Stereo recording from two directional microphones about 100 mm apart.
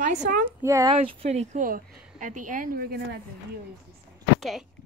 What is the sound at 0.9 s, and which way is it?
Speech, 90° right.